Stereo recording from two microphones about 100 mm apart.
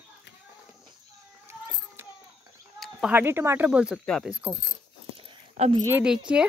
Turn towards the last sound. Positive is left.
turn(degrees=-10)  # may be behind; listen again after turning